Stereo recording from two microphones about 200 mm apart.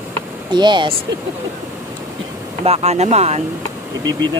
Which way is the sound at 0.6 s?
25° right (ahead or behind).